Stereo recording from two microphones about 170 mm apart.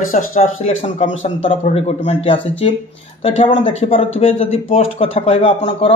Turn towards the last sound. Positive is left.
turn(degrees=35)  # may be behind; listen again after turning